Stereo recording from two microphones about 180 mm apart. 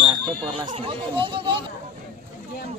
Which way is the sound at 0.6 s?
30° right (ahead or behind).